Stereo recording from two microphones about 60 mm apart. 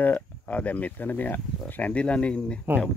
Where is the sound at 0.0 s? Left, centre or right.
Left.